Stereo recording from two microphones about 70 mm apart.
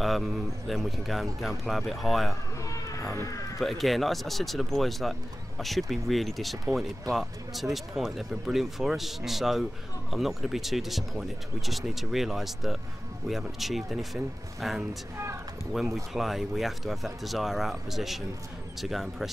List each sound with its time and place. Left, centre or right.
0.0 s speech: centre
2.6 s a sound: left
3.5 s speech: centre